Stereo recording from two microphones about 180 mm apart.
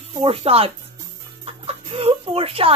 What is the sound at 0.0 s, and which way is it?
Speech, 35° right (ahead or behind).